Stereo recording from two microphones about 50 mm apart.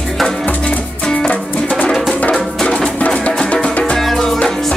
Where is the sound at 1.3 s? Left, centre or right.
Left.